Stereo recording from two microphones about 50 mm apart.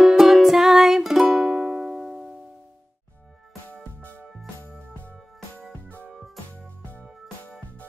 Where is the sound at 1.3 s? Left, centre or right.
Centre.